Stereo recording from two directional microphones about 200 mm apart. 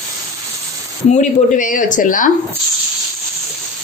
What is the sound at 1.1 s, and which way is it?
Speech, 40° left (ahead or behind).